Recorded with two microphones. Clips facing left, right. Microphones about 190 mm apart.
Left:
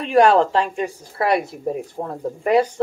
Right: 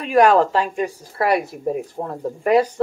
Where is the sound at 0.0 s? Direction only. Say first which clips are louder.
Even; 30° left (ahead or behind).